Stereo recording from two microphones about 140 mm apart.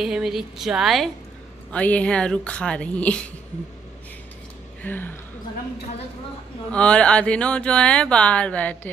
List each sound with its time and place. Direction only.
0.0 s a woman's voice: centre (ahead or behind)
4.8 s speech: 15° left (ahead or behind)
6.7 s speech: 10° left (ahead or behind)